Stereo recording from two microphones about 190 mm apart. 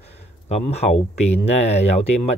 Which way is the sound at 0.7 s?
35° left (ahead or behind).